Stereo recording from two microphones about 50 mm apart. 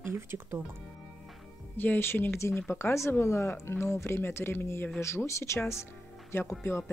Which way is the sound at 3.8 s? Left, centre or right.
Left.